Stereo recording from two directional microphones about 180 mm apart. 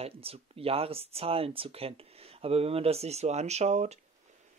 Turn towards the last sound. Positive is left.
turn(degrees=-40)  # may be behind; listen again after turning